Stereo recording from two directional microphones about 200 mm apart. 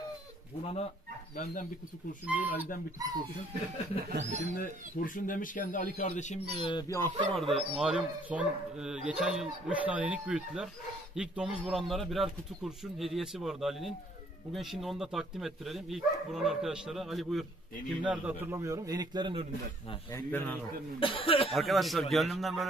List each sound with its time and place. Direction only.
1.3 s speech: 45° left (ahead or behind)
2.2 s speech: 10° right (ahead or behind)
3.0 s speech: 20° right (ahead or behind)
3.9 s speech: 30° left (ahead or behind)
4.3 s speech: 35° right (ahead or behind)
4.6 s speech: 40° left (ahead or behind)
6.6 s speech: 20° left (ahead or behind)
7.2 s speech: centre (ahead or behind); by 19.4 s 20° right (ahead or behind)
20.1 s a man's voice: 10° left (ahead or behind)
21.0 s speech: 25° left (ahead or behind)
21.5 s speech: centre (ahead or behind)